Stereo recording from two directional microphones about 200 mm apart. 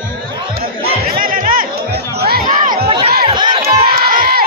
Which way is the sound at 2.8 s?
30° right (ahead or behind).